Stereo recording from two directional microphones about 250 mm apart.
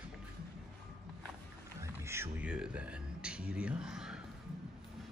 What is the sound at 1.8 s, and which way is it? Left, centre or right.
Music, centre.